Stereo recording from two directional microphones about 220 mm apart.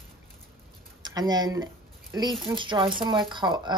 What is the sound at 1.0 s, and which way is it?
Speech, 15° right (ahead or behind).